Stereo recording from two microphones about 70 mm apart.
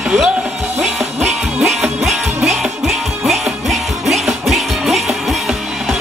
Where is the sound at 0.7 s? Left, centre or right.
Centre.